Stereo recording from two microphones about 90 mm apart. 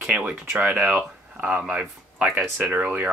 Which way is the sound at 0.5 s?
15° right (ahead or behind).